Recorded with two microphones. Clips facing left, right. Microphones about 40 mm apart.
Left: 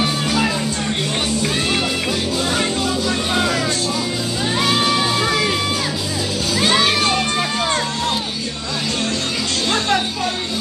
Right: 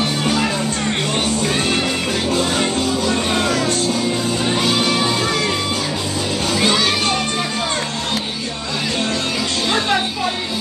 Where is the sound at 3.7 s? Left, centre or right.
Right.